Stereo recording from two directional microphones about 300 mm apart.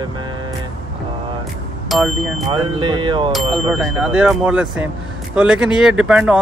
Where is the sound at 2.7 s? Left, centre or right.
Centre.